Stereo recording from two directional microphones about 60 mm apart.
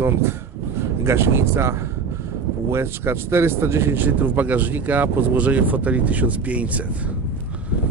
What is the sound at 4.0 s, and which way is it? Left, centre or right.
Speech, right.